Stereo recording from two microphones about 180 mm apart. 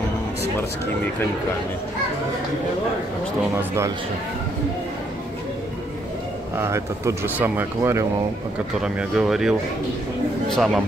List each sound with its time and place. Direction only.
3.5 s speech: 15° right (ahead or behind)
6.5 s speech: 15° right (ahead or behind)
8.8 s speech: 5° right (ahead or behind)